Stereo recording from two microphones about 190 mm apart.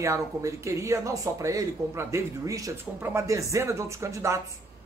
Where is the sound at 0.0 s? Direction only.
15° right (ahead or behind).